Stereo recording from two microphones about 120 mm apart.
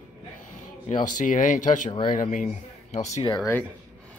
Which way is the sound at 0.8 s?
90° left.